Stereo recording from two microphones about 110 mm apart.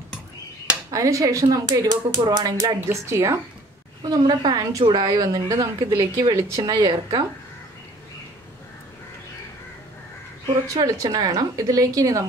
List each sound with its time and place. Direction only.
0.9 s a woman's voice: 30° right (ahead or behind)
2.9 s a woman's voice: 25° right (ahead or behind)
4.0 s a woman's voice: 35° right (ahead or behind)
10.7 s a woman's voice: 35° right (ahead or behind)